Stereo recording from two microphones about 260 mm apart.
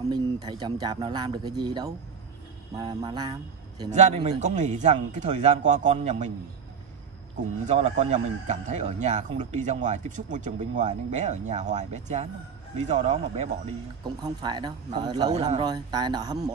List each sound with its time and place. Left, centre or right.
0.1 s speech: centre
7.6 s speech: right